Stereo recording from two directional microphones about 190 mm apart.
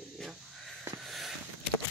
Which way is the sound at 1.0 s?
Centre (ahead or behind).